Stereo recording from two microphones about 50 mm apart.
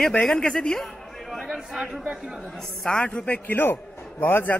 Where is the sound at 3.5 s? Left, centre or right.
Left.